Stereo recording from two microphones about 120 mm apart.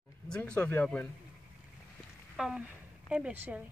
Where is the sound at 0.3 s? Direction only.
10° left (ahead or behind).